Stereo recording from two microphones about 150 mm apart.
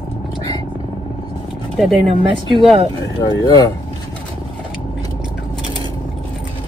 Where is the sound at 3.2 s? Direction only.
25° left (ahead or behind).